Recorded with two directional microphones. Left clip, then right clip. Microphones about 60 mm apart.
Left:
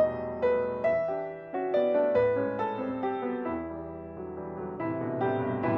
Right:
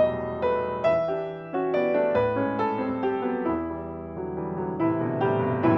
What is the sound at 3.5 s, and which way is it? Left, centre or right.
Music, right.